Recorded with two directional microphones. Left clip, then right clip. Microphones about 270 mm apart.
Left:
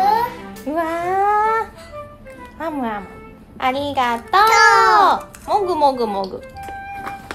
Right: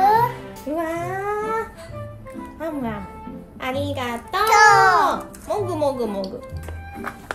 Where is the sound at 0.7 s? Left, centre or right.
Left.